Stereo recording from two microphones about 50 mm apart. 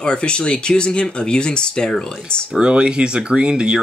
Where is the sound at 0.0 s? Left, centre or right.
Centre.